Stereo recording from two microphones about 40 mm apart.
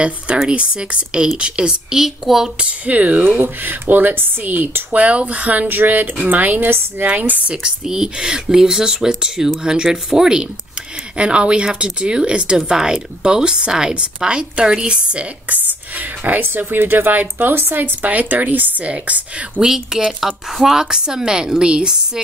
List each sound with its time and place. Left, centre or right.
0.5 s speech: right
1.9 s speech: centre
2.9 s speech: right
3.8 s speech: right
5.7 s speech: right
7.4 s speech: centre
11.1 s speech: right
16.4 s speech: right
19.7 s speech: centre